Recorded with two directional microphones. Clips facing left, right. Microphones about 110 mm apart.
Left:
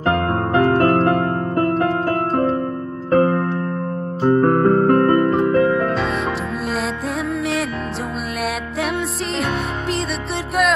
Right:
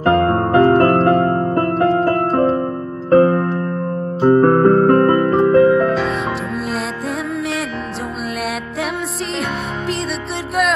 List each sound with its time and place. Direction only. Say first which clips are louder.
0.0 s music: right 5 dB; 35° right (ahead or behind)
5.7 s music: right 4 dB; centre (ahead or behind)
7.3 s music: even; centre (ahead or behind)
9.3 s music: left 1 dB; centre (ahead or behind)